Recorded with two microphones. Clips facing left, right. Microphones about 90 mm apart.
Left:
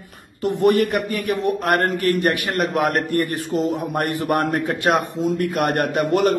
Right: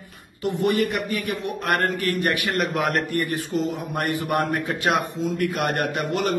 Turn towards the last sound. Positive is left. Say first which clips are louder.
# left 6 dB
turn(degrees=50)  # may be behind; listen again after turning